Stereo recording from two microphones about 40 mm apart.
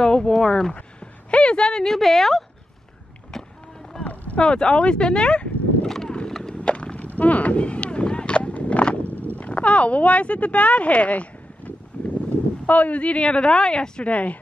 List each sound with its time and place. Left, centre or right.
0.0 s speech: centre
1.3 s speech: left
2.0 s speech: centre
3.9 s boat: centre
4.4 s speech: left
6.0 s clip-clop: centre
6.5 s a sound: left
7.2 s a sound: left
9.1 s a sound: right
9.4 s speech: left
12.0 s a sound: left
12.6 s speech: left
14.0 s speech: left